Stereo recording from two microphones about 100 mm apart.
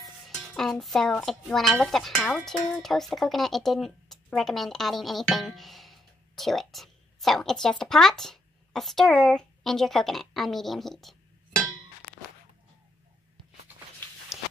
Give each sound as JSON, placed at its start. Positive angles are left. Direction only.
{"t": 0.0, "sound": "music", "side_deg": 5}
{"t": 1.2, "sound": "speech", "side_deg": 0}
{"t": 14.3, "sound": "walk", "side_deg": -5}